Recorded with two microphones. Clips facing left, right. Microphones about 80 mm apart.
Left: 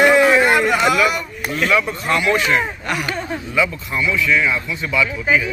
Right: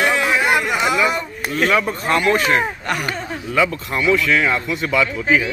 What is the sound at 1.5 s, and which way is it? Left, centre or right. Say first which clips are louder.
Speech: right 1 dB; right.